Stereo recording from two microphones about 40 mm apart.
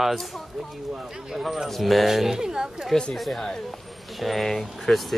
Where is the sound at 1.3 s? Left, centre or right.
Centre.